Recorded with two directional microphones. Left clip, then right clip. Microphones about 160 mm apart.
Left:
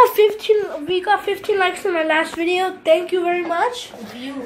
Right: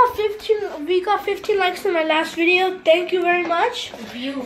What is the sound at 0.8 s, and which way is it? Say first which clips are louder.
A woman's voice: right 2 dB; 10° left (ahead or behind).